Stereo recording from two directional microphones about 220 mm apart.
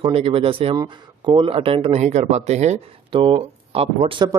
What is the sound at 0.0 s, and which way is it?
Speech, 25° right (ahead or behind).